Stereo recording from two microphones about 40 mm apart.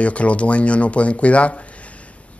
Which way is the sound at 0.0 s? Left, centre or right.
Left.